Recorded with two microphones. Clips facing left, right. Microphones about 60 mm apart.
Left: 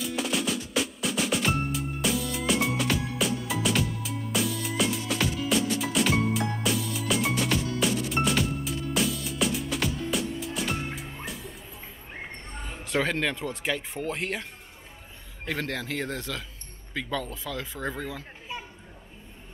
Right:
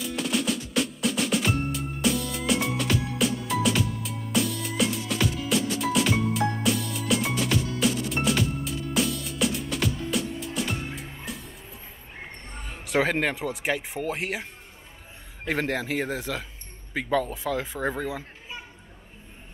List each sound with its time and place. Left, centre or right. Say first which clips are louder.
0.0 s music: right 1 dB; centre
12.9 s speech: right 3 dB; centre
15.4 s speech: right 4 dB; centre